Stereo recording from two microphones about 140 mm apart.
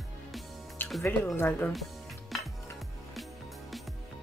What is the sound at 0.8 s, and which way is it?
Music, 15° left (ahead or behind).